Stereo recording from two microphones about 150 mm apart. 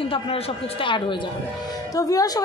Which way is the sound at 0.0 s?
40° left (ahead or behind).